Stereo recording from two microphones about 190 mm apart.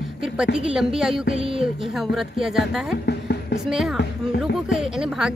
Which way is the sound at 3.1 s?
60° left (ahead or behind).